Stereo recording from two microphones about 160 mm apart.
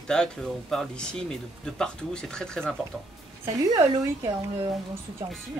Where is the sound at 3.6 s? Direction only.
20° right (ahead or behind).